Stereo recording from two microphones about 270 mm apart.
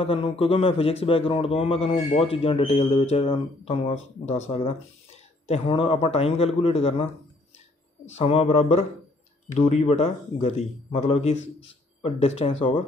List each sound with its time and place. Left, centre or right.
0.0 s speech: centre
8.2 s speech: left